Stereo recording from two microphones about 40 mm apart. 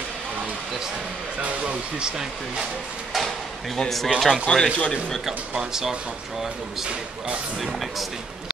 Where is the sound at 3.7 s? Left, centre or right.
Centre.